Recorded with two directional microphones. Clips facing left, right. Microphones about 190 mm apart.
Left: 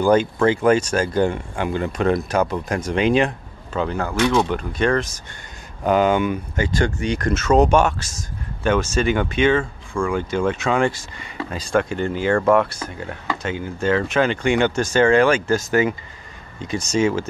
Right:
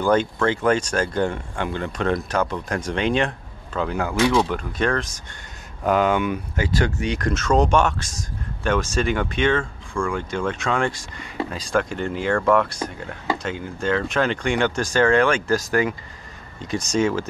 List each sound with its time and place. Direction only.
0.0 s speech: 10° left (ahead or behind)
13.4 s speech: 5° left (ahead or behind)